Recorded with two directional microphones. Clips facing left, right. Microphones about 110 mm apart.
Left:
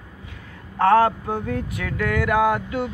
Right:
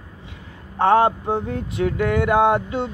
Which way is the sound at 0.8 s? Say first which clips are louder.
Even; 20° right (ahead or behind).